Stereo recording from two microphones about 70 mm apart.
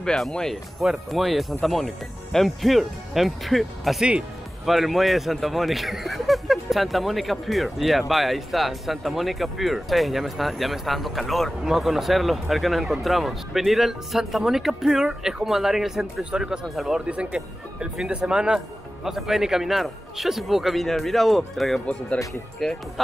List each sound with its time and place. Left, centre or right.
0.0 s speech: centre
17.0 s speech: centre